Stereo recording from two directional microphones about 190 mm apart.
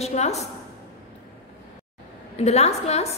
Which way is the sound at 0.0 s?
35° left (ahead or behind).